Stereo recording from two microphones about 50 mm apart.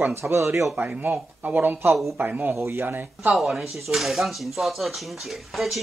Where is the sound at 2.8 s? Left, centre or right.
Right.